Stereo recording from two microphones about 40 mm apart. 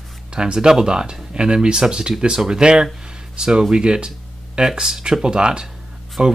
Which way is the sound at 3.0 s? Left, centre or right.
Centre.